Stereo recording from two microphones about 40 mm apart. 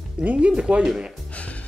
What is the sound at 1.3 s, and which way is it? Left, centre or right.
Music, left.